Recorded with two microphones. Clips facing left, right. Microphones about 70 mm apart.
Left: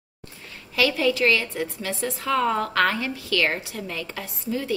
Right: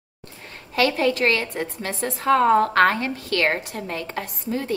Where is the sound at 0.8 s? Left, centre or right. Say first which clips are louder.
Right 1 dB; right.